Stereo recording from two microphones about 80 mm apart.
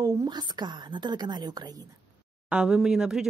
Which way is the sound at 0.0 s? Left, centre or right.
Right.